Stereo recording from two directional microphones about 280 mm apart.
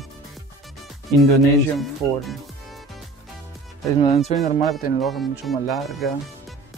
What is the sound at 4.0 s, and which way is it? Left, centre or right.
Speech, centre.